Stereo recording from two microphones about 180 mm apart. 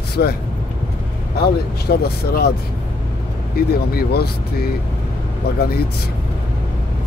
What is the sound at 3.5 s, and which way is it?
Speech, 60° left (ahead or behind).